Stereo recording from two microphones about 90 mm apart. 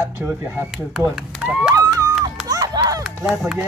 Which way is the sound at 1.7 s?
40° right (ahead or behind).